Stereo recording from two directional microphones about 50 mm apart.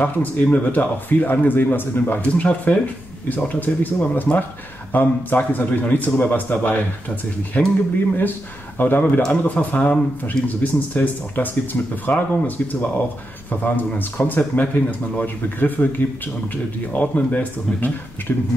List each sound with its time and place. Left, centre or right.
0.0 s speech: left
2.3 s speech: left
9.3 s speech: left
16.9 s speech: left